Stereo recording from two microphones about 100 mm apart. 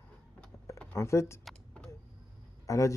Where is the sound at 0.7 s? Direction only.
30° left (ahead or behind).